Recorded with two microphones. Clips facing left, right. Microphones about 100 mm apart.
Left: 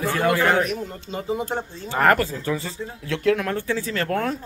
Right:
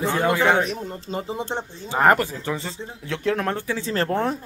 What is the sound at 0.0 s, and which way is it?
Speech, 20° right (ahead or behind).